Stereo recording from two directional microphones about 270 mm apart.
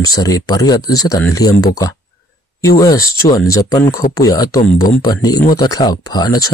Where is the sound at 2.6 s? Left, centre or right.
Centre.